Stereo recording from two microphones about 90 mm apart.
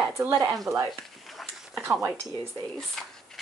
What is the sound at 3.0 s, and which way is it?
Speech, 5° left (ahead or behind).